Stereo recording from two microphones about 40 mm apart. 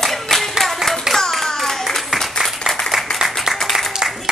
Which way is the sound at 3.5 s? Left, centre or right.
Centre.